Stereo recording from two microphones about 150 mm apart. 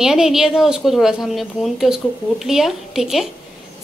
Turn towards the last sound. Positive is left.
turn(degrees=0)  # may be behind; listen again after turning